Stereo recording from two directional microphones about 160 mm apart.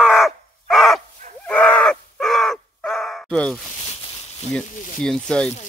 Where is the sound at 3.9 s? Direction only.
45° left (ahead or behind).